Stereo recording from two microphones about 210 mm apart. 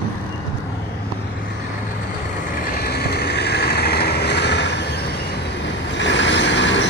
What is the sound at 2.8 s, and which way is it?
Vehicle, 50° left (ahead or behind).